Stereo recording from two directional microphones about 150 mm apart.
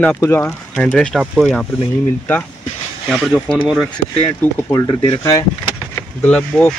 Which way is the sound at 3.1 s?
Centre (ahead or behind).